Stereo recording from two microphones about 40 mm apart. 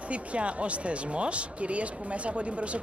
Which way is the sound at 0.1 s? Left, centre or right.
Right.